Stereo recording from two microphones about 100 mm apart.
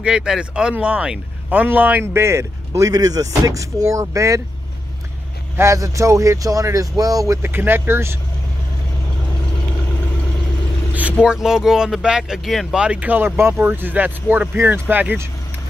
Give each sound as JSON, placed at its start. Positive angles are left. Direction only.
{"t": 0.0, "sound": "speech", "side_deg": -5}
{"t": 2.9, "sound": "speech", "side_deg": -40}
{"t": 5.6, "sound": "speech", "side_deg": -30}
{"t": 7.4, "sound": "speech", "side_deg": -20}
{"t": 11.2, "sound": "speech", "side_deg": -5}